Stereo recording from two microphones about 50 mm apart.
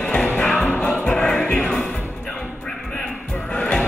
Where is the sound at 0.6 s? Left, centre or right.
Left.